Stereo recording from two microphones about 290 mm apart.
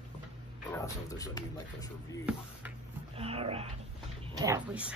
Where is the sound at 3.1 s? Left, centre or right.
Centre.